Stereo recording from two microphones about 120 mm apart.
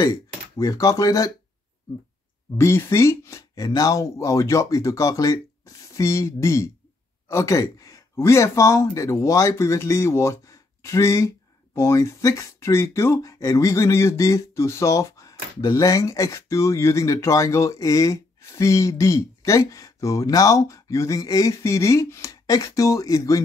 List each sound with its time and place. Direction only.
0.0 s speech: 30° left (ahead or behind)
2.5 s speech: 20° left (ahead or behind)